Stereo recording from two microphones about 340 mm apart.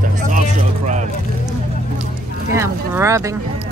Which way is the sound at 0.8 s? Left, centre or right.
Right.